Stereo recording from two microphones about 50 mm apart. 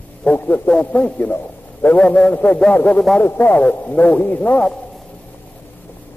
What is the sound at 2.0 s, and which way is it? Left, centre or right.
Music, left.